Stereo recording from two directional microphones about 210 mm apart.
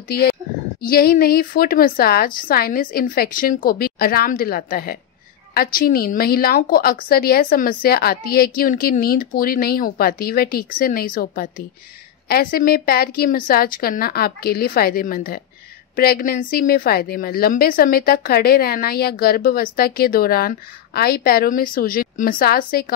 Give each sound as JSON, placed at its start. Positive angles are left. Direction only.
{"t": 0.1, "sound": "a woman's voice", "side_deg": 50}